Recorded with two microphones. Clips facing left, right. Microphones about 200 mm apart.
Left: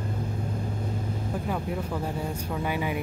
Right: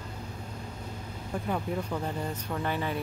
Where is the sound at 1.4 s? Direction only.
5° left (ahead or behind).